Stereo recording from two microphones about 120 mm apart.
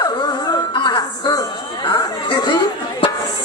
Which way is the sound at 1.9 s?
35° left (ahead or behind).